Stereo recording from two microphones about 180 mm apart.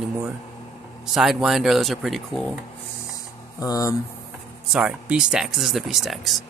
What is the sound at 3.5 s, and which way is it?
Speech, 20° left (ahead or behind).